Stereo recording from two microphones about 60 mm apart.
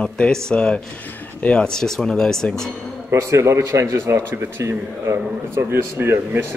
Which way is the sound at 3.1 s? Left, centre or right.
Right.